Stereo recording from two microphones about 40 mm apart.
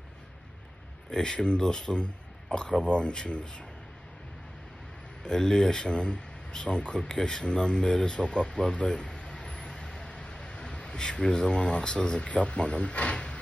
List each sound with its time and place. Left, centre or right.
1.1 s speech: centre
5.2 s speech: centre